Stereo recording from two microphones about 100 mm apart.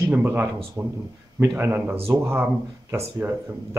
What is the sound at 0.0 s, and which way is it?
Speech, 20° right (ahead or behind).